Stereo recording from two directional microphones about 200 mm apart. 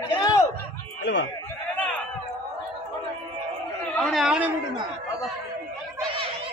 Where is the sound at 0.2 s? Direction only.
15° left (ahead or behind).